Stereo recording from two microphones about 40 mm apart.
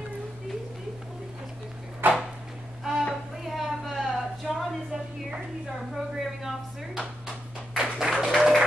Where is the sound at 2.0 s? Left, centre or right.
Right.